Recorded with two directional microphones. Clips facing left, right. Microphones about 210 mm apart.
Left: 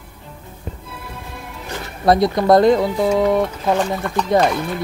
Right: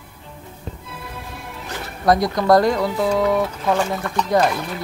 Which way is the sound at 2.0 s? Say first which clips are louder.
Left 2 dB; 25° left (ahead or behind).